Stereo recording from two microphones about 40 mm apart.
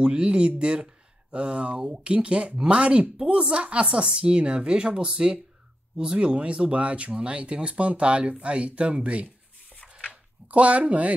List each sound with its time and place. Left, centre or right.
0.0 s speech: right